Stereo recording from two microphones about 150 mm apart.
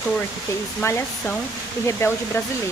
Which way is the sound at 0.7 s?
15° left (ahead or behind).